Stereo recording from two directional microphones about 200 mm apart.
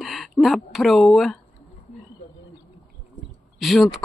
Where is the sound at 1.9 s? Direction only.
30° left (ahead or behind).